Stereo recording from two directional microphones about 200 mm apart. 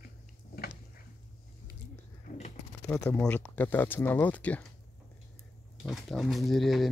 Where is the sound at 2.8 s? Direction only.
5° left (ahead or behind).